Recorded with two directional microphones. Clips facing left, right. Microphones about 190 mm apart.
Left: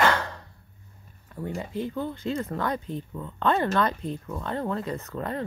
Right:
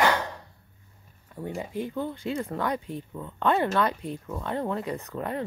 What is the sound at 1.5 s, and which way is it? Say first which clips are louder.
Speech: even; 15° right (ahead or behind).